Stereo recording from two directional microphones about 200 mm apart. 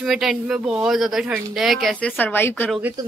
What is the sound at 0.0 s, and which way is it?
Speech, centre (ahead or behind).